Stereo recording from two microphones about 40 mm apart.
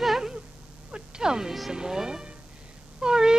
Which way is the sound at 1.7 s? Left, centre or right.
Centre.